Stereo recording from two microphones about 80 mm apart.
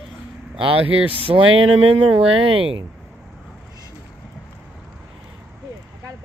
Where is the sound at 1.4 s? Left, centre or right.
Right.